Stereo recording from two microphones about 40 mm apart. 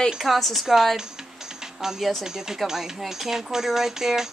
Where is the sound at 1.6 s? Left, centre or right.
Centre.